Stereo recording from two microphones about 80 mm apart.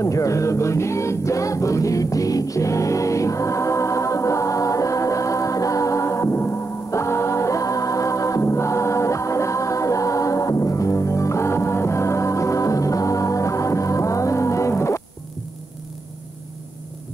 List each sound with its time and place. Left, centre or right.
0.0 s music: left